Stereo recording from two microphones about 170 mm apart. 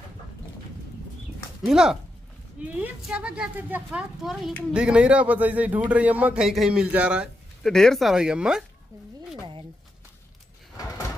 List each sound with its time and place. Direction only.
1.6 s a man's voice: 5° right (ahead or behind)